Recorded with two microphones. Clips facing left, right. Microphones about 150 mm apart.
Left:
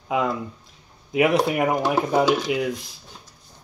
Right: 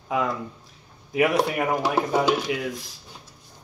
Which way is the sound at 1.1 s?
15° left (ahead or behind).